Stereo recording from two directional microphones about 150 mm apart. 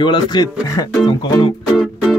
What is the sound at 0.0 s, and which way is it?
Speech, 30° left (ahead or behind).